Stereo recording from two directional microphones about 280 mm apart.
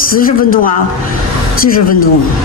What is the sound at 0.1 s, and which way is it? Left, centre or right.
Speech, left.